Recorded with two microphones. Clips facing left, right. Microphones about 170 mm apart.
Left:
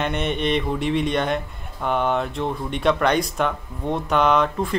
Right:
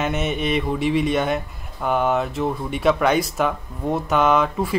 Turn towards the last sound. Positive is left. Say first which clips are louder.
# right 1 dB
turn(degrees=-5)  # may be behind; listen again after turning